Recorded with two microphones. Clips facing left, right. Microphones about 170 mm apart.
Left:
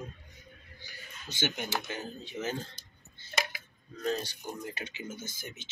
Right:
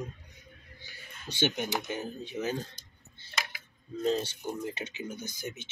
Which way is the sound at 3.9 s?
25° right (ahead or behind).